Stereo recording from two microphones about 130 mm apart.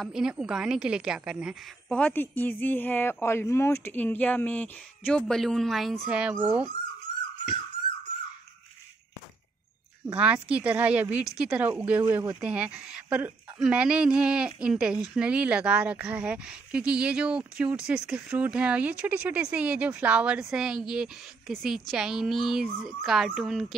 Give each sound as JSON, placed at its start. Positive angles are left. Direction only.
{"t": 0.0, "sound": "speech", "side_deg": -5}
{"t": 1.9, "sound": "speech", "side_deg": 10}
{"t": 10.1, "sound": "speech", "side_deg": -10}